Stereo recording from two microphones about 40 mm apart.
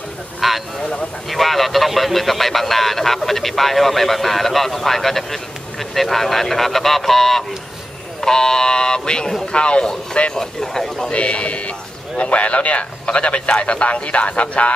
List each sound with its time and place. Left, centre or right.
0.4 s a sound: centre
1.3 s a man's voice: centre; by 10.3 s left
10.3 s speech: centre
11.1 s a man's voice: left